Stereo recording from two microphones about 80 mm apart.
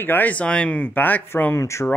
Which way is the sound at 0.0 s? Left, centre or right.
Left.